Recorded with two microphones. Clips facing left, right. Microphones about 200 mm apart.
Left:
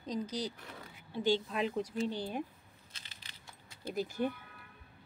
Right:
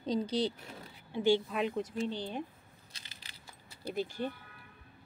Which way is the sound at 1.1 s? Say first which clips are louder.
Right 3 dB; 15° right (ahead or behind).